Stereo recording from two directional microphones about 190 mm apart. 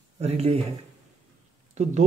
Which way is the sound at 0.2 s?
35° right (ahead or behind).